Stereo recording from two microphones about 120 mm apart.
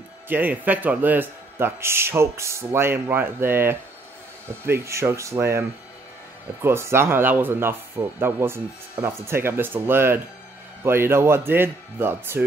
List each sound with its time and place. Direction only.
0.3 s a man's voice: 15° right (ahead or behind)